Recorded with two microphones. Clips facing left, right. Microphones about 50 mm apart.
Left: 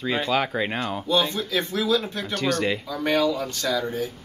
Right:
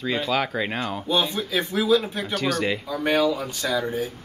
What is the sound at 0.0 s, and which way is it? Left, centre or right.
Speech, centre.